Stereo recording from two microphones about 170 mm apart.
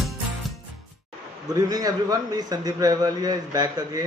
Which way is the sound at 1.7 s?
20° right (ahead or behind).